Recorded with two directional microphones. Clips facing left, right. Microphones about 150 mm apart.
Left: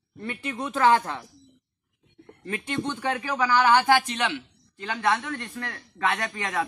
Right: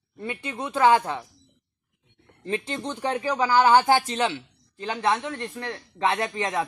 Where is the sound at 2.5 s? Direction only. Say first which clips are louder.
Even; 30° right (ahead or behind).